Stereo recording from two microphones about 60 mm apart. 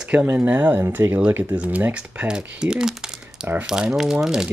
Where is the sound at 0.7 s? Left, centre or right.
Right.